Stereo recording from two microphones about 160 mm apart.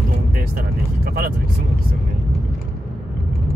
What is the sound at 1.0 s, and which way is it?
Speech, 70° right (ahead or behind).